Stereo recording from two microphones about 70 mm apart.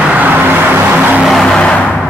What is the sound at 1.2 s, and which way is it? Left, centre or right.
Vehicle, centre.